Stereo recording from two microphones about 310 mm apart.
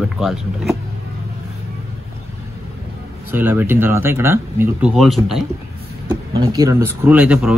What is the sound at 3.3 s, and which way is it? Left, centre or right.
Speech, centre.